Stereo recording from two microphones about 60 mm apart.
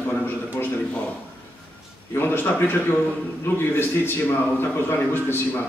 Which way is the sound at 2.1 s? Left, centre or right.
Left.